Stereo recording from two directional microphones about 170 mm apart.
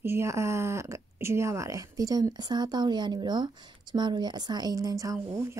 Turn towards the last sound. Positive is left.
turn(degrees=-15)  # may be behind; listen again after turning